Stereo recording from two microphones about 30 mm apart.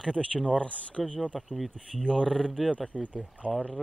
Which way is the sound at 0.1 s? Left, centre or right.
Left.